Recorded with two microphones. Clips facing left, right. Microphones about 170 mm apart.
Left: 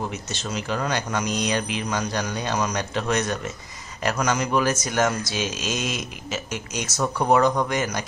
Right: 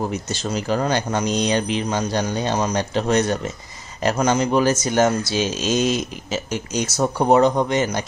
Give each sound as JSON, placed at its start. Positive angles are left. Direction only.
{"t": 0.1, "sound": "speech", "side_deg": -35}